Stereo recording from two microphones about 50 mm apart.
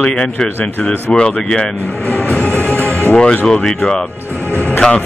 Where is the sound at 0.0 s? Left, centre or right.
Centre.